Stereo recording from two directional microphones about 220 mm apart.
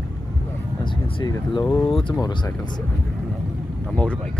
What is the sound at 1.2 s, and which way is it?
Speech, 15° left (ahead or behind).